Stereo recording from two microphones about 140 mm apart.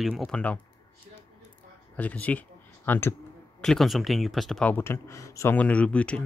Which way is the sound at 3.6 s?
Centre (ahead or behind).